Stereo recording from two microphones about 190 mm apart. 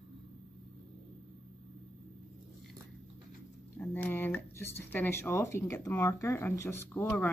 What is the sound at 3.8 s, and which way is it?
Speech, 10° left (ahead or behind).